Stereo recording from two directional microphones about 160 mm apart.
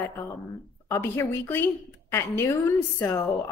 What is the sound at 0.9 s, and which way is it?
A woman's voice, 15° left (ahead or behind).